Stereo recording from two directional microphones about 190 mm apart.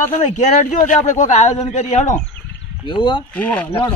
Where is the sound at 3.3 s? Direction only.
5° left (ahead or behind).